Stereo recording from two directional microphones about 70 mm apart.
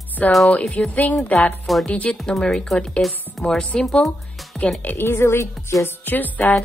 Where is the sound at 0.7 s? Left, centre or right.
Left.